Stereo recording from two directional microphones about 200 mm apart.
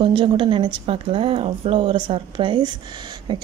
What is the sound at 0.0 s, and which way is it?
A woman's voice, 25° right (ahead or behind).